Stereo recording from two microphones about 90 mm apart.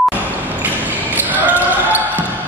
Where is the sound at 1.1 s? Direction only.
20° right (ahead or behind).